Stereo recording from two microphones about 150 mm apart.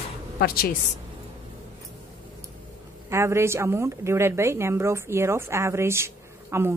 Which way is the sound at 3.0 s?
20° right (ahead or behind).